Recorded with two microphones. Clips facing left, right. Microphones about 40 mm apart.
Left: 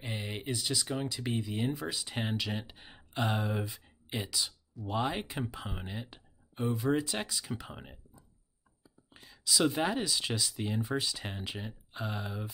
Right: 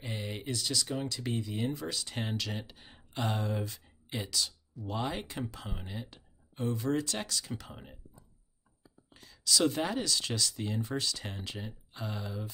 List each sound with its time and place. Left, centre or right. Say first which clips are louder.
0.0 s speech: even; centre
9.1 s speech: right 1 dB; centre